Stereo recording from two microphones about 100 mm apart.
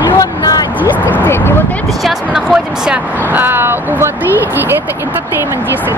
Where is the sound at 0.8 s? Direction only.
15° right (ahead or behind).